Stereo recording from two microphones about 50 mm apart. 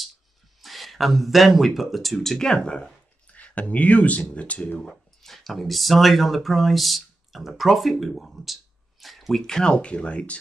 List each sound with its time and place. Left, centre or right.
0.6 s speech: centre
3.3 s speech: left
4.8 s speech: centre
9.0 s a sound: centre
9.4 s speech: centre